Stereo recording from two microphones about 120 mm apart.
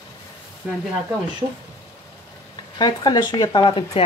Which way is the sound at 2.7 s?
35° left (ahead or behind).